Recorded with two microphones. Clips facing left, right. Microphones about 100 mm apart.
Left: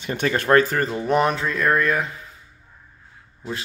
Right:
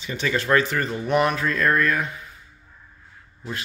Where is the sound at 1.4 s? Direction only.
20° left (ahead or behind).